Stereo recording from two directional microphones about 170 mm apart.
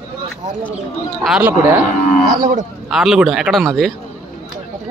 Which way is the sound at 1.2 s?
5° right (ahead or behind).